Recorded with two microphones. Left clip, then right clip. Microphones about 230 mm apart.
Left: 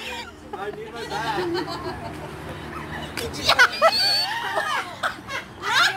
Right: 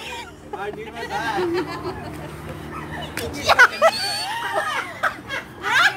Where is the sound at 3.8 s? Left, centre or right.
Centre.